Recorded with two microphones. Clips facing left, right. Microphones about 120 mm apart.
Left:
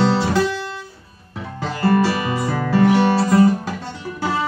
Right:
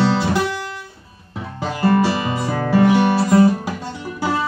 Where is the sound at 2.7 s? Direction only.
15° right (ahead or behind).